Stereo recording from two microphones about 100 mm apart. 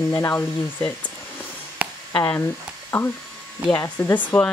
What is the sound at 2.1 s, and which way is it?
Speech, 20° left (ahead or behind).